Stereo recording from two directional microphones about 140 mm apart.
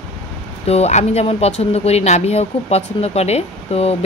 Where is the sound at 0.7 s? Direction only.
50° left (ahead or behind).